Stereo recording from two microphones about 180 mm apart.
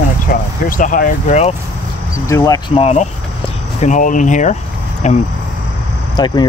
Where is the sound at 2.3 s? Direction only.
20° left (ahead or behind).